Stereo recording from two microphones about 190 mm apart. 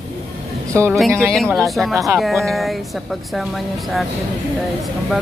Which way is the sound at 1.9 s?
15° right (ahead or behind).